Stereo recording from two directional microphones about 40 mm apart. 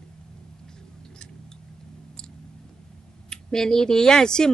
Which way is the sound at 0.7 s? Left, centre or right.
Centre.